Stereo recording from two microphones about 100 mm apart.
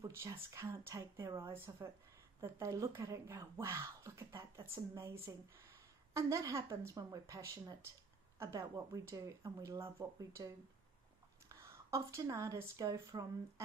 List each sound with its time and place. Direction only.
0.0 s a woman's voice: 30° right (ahead or behind)